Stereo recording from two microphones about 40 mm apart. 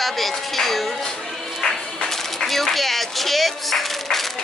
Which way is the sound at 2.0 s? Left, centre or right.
Centre.